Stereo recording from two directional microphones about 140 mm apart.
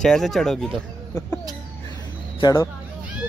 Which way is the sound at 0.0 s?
5° left (ahead or behind).